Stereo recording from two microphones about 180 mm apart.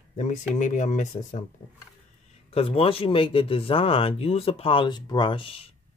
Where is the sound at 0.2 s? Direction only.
45° left (ahead or behind).